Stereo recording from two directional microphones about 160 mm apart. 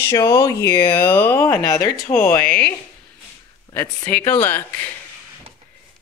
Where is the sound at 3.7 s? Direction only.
15° left (ahead or behind).